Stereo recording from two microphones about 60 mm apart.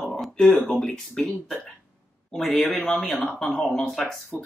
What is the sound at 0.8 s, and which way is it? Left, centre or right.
Speech, centre.